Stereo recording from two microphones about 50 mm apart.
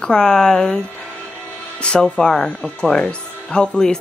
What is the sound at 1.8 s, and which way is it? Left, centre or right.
Speech, centre.